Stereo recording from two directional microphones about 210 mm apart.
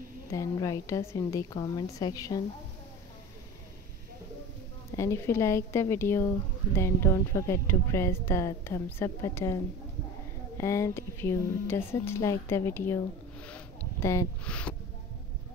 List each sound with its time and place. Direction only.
0.3 s speech: 15° left (ahead or behind)
4.9 s speech: 15° left (ahead or behind)
10.6 s speech: 15° left (ahead or behind)